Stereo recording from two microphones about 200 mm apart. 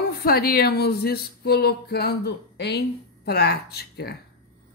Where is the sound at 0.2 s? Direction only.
50° left (ahead or behind).